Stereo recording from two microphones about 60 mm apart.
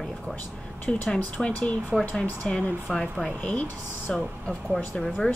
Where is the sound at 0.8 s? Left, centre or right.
Centre.